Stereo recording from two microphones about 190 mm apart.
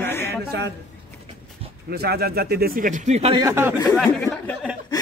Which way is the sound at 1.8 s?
55° right (ahead or behind).